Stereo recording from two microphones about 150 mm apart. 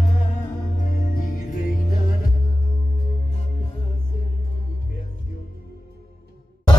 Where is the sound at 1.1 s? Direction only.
65° left (ahead or behind).